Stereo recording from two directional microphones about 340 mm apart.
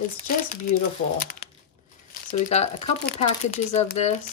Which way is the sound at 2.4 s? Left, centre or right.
Centre.